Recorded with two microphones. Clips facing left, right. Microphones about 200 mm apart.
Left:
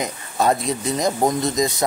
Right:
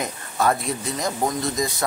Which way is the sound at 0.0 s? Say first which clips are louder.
Left 2 dB; 20° left (ahead or behind).